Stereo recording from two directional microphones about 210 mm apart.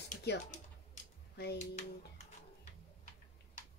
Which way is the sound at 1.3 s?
50° left (ahead or behind).